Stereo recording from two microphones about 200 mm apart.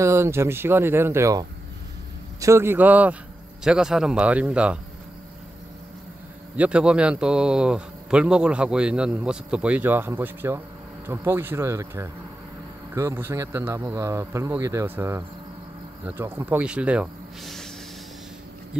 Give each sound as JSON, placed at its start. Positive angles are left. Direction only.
{"t": 0.0, "sound": "a man's voice", "side_deg": -15}
{"t": 6.5, "sound": "a man's voice", "side_deg": -5}